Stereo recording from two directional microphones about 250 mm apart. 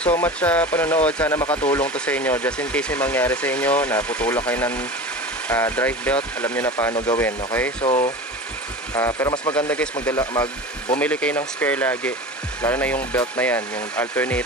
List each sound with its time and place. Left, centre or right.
0.0 s speech: centre
1.4 s speech: left
1.7 s speech: centre
7.8 s speech: left
8.9 s speech: centre